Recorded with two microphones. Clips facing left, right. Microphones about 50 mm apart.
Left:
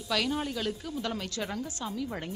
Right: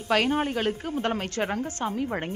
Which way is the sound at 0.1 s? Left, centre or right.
Right.